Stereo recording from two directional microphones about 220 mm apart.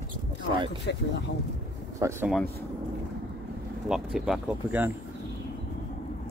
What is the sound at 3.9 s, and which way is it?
Speech, centre (ahead or behind).